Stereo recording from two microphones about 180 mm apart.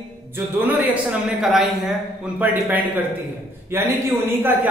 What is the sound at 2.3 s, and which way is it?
A man's voice, 10° right (ahead or behind).